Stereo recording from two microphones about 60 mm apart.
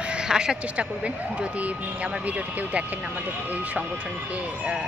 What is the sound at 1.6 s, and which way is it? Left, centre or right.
Speech, right.